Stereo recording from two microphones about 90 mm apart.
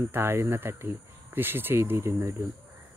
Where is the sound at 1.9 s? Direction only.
35° right (ahead or behind).